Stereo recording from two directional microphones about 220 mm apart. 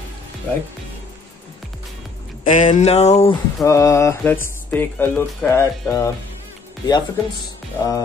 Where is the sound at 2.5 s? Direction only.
35° left (ahead or behind).